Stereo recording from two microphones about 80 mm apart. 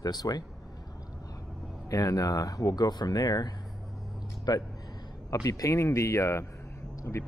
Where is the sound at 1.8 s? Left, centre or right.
Left.